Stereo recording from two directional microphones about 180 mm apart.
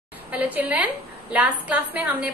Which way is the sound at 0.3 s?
10° right (ahead or behind).